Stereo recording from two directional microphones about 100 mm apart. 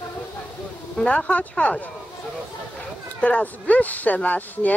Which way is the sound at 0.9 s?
10° left (ahead or behind).